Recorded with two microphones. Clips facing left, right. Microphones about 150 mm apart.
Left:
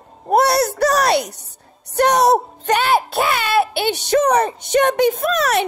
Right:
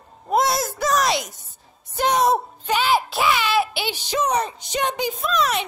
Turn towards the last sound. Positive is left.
turn(degrees=65)  # may be behind; listen again after turning